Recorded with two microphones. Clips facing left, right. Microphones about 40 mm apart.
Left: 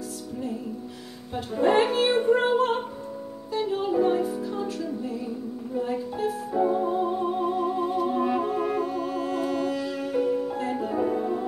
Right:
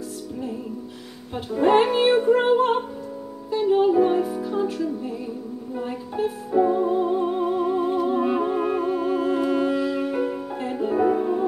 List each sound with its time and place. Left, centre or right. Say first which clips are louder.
1.3 s speech: right 3 dB; right
2.2 s music: right 3 dB; centre
5.8 s speech: right 1 dB; right
6.6 s music: right 3 dB; centre